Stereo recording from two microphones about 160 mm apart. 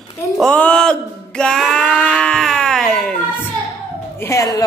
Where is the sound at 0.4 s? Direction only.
5° left (ahead or behind).